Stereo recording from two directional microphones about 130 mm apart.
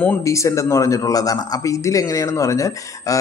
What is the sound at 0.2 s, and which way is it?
Speech, 25° left (ahead or behind).